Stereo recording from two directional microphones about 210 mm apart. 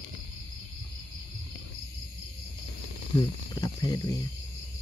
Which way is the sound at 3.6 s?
20° left (ahead or behind).